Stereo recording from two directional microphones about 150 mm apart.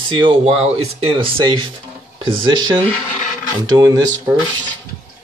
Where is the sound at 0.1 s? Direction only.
35° right (ahead or behind).